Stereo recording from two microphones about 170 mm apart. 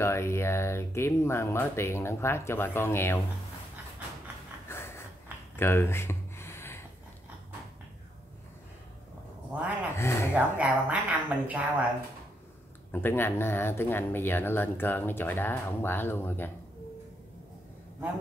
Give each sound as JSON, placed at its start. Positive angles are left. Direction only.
{"t": 0.0, "sound": "speech", "side_deg": 15}
{"t": 4.6, "sound": "a sound", "side_deg": 15}
{"t": 9.5, "sound": "speech", "side_deg": -10}
{"t": 9.9, "sound": "speech", "side_deg": 15}
{"t": 10.3, "sound": "speech", "side_deg": -10}
{"t": 12.9, "sound": "speech", "side_deg": 15}